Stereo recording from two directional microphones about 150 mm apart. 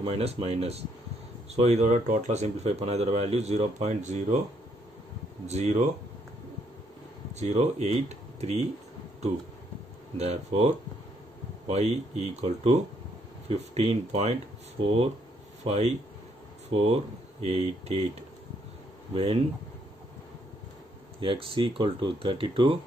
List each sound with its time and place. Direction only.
0.0 s speech: 45° right (ahead or behind)
5.5 s speech: 50° right (ahead or behind)
7.3 s speech: 50° right (ahead or behind)
10.1 s speech: 45° right (ahead or behind)
11.7 s speech: 45° right (ahead or behind)
15.6 s speech: 50° right (ahead or behind)
19.1 s speech: 40° right (ahead or behind)
21.2 s speech: 35° right (ahead or behind)